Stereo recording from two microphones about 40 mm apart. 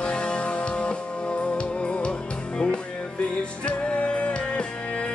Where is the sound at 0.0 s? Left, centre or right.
Left.